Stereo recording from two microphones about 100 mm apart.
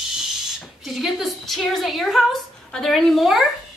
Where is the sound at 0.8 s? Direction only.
5° right (ahead or behind).